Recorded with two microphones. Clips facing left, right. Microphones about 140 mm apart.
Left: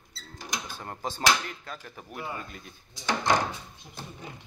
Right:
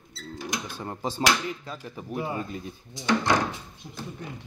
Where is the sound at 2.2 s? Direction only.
30° right (ahead or behind).